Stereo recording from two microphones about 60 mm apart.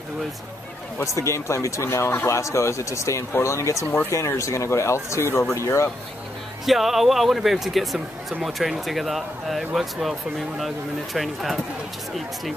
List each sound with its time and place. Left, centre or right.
1.0 s speech: left
6.6 s a man's voice: centre
11.1 s a man's voice: centre